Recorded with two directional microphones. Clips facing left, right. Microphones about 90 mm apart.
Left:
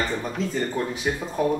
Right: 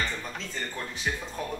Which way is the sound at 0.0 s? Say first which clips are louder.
Left 6 dB; 40° left (ahead or behind).